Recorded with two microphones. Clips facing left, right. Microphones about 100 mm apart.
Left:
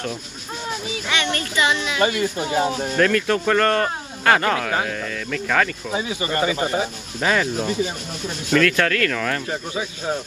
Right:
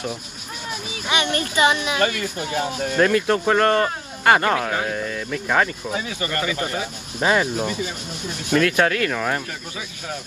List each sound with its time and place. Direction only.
1.0 s speech: 20° right (ahead or behind)
2.0 s speech: 20° left (ahead or behind)
3.0 s speech: 15° right (ahead or behind)
5.9 s speech: 20° left (ahead or behind)
7.2 s speech: 20° right (ahead or behind)
7.6 s speech: 20° left (ahead or behind)
8.5 s speech: 20° right (ahead or behind)
9.5 s speech: 25° left (ahead or behind)